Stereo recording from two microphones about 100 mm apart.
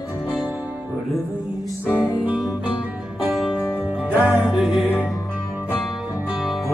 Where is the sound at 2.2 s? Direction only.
15° right (ahead or behind).